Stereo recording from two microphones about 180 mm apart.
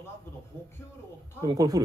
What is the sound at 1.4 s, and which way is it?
Speech, 20° right (ahead or behind).